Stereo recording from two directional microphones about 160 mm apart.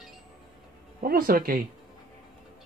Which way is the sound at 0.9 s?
65° right (ahead or behind).